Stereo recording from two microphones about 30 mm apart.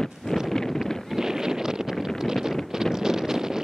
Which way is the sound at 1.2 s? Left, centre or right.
Centre.